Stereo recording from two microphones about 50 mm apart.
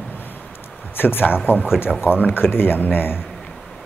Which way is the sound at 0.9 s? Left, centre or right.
Left.